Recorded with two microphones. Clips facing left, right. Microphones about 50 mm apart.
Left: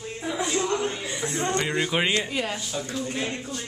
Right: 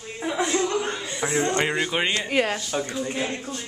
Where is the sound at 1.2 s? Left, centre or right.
Right.